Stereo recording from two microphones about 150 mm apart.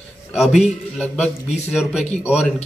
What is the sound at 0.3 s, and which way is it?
A man's voice, centre (ahead or behind).